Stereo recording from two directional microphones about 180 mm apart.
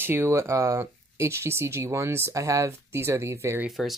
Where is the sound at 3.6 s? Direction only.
Centre (ahead or behind).